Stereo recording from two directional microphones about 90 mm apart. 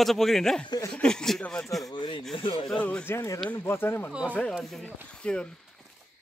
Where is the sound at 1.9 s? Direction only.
65° left (ahead or behind).